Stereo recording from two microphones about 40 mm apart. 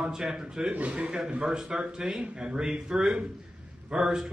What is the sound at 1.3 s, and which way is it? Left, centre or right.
A man's voice, right.